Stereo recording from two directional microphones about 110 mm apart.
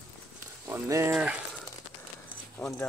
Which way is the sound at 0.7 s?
25° right (ahead or behind).